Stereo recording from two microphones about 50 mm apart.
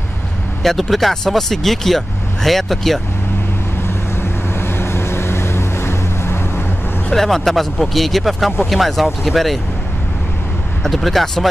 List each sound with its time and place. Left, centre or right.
0.7 s speech: centre
4.2 s vehicle: left
7.1 s speech: centre
10.8 s speech: centre